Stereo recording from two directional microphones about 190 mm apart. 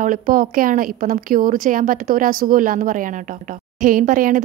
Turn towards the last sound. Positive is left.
turn(degrees=-45)  # may be behind; listen again after turning